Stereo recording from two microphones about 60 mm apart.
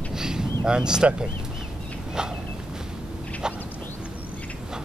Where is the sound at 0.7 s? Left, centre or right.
Centre.